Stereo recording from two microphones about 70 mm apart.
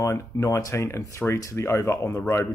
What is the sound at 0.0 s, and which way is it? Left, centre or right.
Speech, left.